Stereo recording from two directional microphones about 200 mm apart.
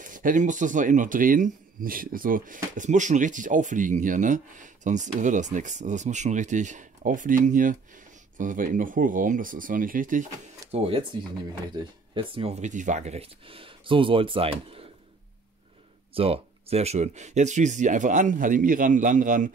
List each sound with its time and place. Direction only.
0.0 s speech: 40° right (ahead or behind)
10.7 s speech: 30° right (ahead or behind)
16.1 s speech: 30° right (ahead or behind)